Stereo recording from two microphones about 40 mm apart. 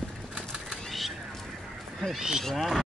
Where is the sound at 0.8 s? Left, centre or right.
Centre.